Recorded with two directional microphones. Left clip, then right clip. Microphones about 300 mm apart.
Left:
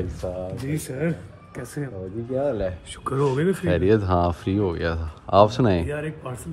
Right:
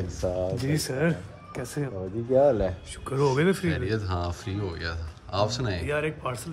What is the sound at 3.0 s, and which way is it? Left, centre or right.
Speech, centre.